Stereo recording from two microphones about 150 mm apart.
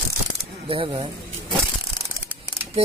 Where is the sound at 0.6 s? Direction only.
35° right (ahead or behind).